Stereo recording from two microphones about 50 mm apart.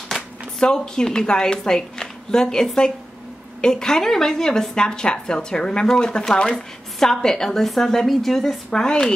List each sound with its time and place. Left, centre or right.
0.1 s a woman's voice: centre
8.6 s a woman's voice: centre